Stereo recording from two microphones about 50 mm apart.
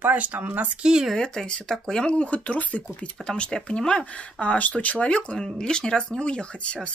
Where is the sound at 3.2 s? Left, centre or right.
Centre.